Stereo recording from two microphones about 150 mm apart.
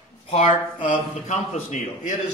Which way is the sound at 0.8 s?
55° left (ahead or behind).